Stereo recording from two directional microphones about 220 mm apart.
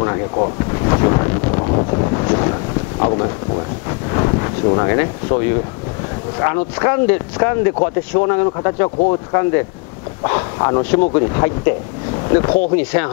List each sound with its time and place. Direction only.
0.0 s wind noise: 20° left (ahead or behind)
3.0 s thunder: 25° left (ahead or behind)
4.1 s wind noise: 20° left (ahead or behind)
6.4 s speech: 20° left (ahead or behind)
10.6 s speech: 20° left (ahead or behind)
12.7 s speech: 10° left (ahead or behind)